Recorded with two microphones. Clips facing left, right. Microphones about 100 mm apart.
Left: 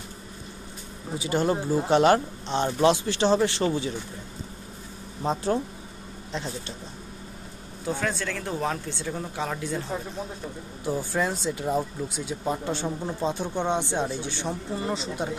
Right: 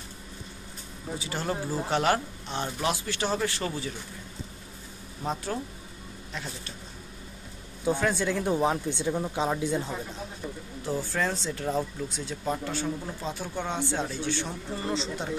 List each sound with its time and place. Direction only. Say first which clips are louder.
1.2 s speech: left 8 dB; 20° left (ahead or behind)
5.2 s speech: left 6 dB; 30° left (ahead or behind)
8.0 s speech: right 3 dB; 15° right (ahead or behind)
11.0 s speech: left 2 dB; 15° left (ahead or behind)